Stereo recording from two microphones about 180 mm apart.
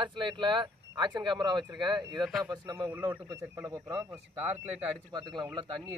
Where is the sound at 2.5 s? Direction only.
20° right (ahead or behind).